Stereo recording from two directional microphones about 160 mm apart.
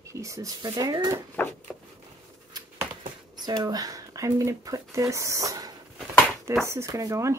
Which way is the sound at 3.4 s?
25° right (ahead or behind).